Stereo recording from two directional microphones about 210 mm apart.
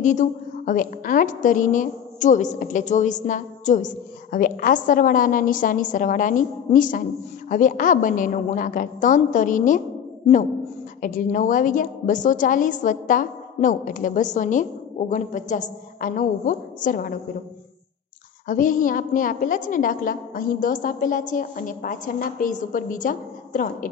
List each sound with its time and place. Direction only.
0.0 s a woman's voice: 35° left (ahead or behind)
11.0 s a woman's voice: 40° left (ahead or behind)
18.5 s a woman's voice: 40° left (ahead or behind)